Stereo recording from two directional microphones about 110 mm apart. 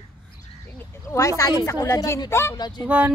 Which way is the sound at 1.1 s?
30° left (ahead or behind).